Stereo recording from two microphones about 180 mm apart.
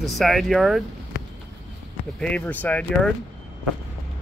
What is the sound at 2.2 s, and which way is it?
Speech, 10° left (ahead or behind).